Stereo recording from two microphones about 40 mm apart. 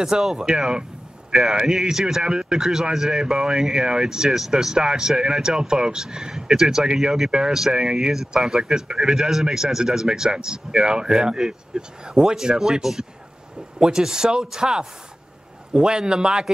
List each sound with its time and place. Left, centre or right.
0.0 s a man's voice: centre